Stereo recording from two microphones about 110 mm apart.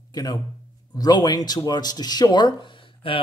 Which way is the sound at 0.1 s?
35° left (ahead or behind).